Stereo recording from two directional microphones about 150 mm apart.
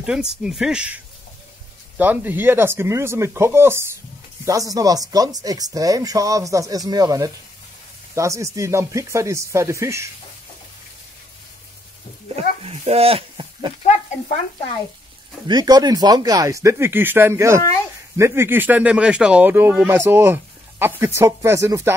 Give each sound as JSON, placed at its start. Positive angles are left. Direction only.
{"t": 0.0, "sound": "speech", "side_deg": -5}
{"t": 12.4, "sound": "a sound", "side_deg": -45}
{"t": 15.4, "sound": "speech", "side_deg": -25}